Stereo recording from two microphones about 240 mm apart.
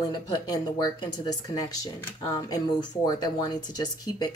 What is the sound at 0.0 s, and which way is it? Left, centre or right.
Speech, centre.